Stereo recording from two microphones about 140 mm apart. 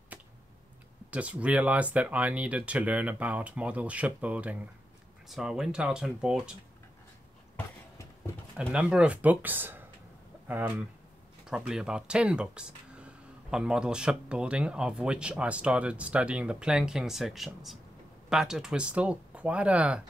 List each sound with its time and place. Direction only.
1.1 s speech: 10° right (ahead or behind)
8.5 s speech: 5° right (ahead or behind)